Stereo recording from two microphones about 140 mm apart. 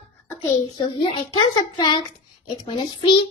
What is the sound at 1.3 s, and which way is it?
A child's voice, 35° left (ahead or behind).